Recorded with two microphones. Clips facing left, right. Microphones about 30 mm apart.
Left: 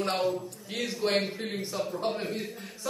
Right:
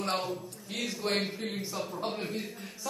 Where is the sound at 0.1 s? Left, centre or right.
Centre.